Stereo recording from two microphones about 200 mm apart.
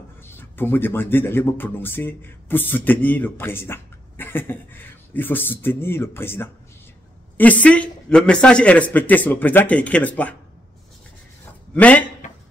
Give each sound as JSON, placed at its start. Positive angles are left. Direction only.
{"t": 0.2, "sound": "speech", "side_deg": 10}
{"t": 11.7, "sound": "a man's voice", "side_deg": 5}